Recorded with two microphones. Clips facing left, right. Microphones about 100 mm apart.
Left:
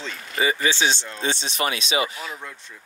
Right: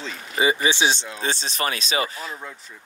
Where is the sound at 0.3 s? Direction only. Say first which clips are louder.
Right 2 dB; 20° right (ahead or behind).